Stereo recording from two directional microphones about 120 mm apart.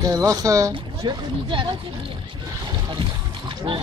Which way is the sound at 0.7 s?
40° right (ahead or behind).